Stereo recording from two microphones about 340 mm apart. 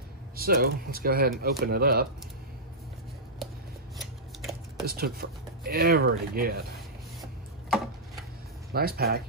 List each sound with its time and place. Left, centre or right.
0.4 s speech: right
4.0 s a sound: centre
4.8 s speech: right
8.7 s speech: right